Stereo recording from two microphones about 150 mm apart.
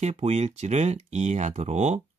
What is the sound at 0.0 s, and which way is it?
Speech, 45° right (ahead or behind).